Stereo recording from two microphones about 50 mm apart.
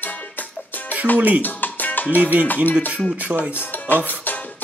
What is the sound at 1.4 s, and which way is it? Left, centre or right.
Music, left.